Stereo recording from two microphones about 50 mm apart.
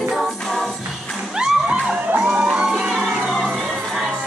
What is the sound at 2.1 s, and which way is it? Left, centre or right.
Music, right.